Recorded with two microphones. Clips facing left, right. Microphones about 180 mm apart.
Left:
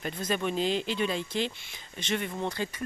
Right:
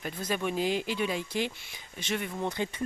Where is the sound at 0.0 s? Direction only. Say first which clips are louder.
Left 1 dB; 10° right (ahead or behind).